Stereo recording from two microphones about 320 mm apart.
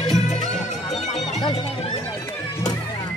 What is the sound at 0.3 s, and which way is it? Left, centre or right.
Music, left.